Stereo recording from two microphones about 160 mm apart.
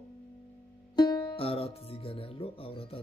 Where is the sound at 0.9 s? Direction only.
25° left (ahead or behind).